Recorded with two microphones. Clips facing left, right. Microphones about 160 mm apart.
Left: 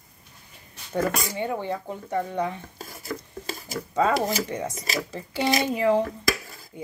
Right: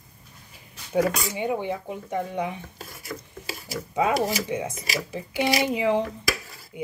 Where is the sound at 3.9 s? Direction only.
10° right (ahead or behind).